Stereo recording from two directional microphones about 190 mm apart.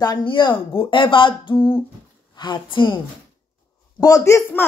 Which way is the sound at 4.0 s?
15° left (ahead or behind).